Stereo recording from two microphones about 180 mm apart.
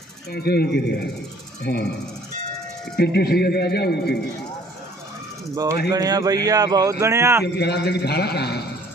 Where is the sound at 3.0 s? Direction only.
65° left (ahead or behind).